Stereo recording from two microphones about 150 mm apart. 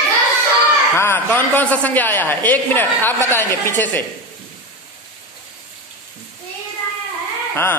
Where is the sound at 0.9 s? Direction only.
15° left (ahead or behind).